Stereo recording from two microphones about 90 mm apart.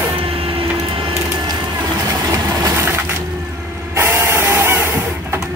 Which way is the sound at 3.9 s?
30° right (ahead or behind).